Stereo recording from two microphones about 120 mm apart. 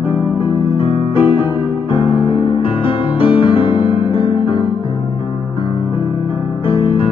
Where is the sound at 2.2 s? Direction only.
45° left (ahead or behind).